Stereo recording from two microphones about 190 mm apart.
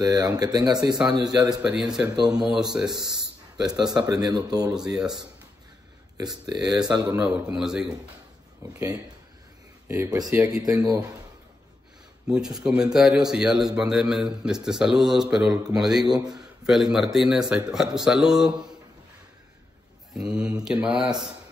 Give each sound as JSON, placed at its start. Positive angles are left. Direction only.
{"t": 0.0, "sound": "speech", "side_deg": -20}
{"t": 1.6, "sound": "a man's voice", "side_deg": -5}
{"t": 2.9, "sound": "speech", "side_deg": -20}
{"t": 3.6, "sound": "a man's voice", "side_deg": -5}
{"t": 4.3, "sound": "speech", "side_deg": -20}
{"t": 4.7, "sound": "a man's voice", "side_deg": -5}
{"t": 6.1, "sound": "speech", "side_deg": -20}
{"t": 7.2, "sound": "a man's voice", "side_deg": -5}
{"t": 8.6, "sound": "speech", "side_deg": -20}
{"t": 9.8, "sound": "speech", "side_deg": -15}
{"t": 12.3, "sound": "a man's voice", "side_deg": -5}
{"t": 20.2, "sound": "speech", "side_deg": -5}